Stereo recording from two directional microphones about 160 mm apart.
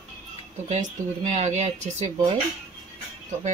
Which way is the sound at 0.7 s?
45° right (ahead or behind).